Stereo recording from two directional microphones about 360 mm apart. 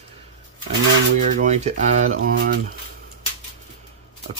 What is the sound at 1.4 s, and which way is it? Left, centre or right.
Speech, centre.